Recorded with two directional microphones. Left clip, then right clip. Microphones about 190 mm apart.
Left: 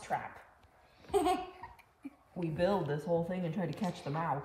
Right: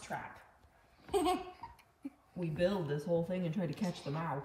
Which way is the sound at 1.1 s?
10° left (ahead or behind).